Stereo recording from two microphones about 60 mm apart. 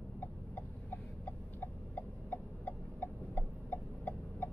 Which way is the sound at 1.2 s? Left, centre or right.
Left.